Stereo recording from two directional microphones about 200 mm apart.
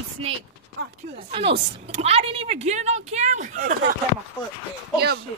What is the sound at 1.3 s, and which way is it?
Speech, 25° right (ahead or behind).